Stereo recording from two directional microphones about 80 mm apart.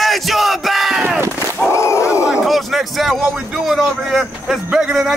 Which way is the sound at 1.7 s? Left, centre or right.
Left.